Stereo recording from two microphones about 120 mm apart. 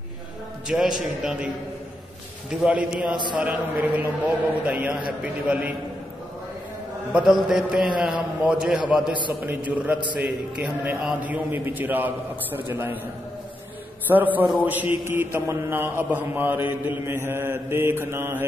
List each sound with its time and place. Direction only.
0.7 s a man's voice: 5° right (ahead or behind)
2.5 s a man's voice: 5° right (ahead or behind)
7.1 s a man's voice: 5° right (ahead or behind)
14.0 s a man's voice: 15° right (ahead or behind)
16.0 s mantra: 15° right (ahead or behind)